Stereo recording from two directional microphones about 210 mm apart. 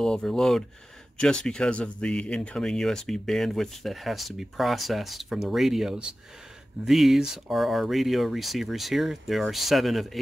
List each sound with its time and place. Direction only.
0.0 s speech: 5° left (ahead or behind)